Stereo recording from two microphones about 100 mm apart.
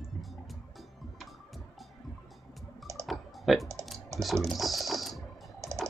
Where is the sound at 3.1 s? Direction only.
Centre (ahead or behind).